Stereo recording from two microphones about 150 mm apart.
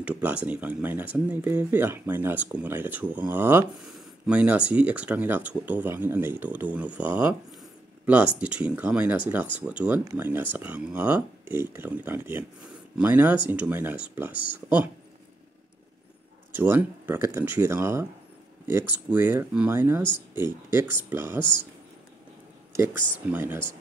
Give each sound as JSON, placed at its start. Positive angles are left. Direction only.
{"t": 0.0, "sound": "speech", "side_deg": -10}
{"t": 16.5, "sound": "speech", "side_deg": -15}
{"t": 23.3, "sound": "speech", "side_deg": -15}